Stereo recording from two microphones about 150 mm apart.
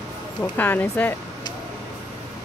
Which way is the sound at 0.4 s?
10° left (ahead or behind).